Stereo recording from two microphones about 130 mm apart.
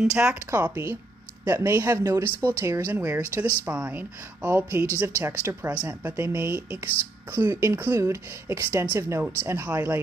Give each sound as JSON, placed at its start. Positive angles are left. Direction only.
{"t": 0.0, "sound": "speech", "side_deg": -5}
{"t": 0.5, "sound": "speech", "side_deg": -15}